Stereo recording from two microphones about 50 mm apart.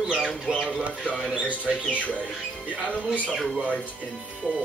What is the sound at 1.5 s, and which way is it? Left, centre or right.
Speech, left.